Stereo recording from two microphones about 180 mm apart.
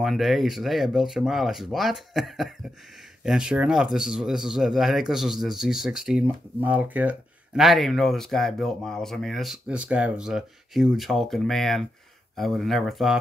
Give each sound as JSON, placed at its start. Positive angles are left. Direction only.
{"t": 0.0, "sound": "speech", "side_deg": 0}